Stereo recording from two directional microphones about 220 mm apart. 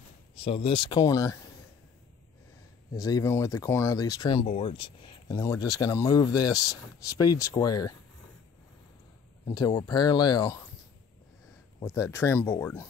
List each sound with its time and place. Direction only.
0.4 s speech: 25° left (ahead or behind)
2.9 s speech: 15° left (ahead or behind)
9.5 s speech: 20° left (ahead or behind)
11.8 s speech: 10° left (ahead or behind)